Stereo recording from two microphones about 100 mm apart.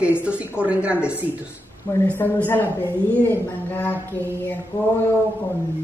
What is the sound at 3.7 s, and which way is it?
Speech, 20° left (ahead or behind).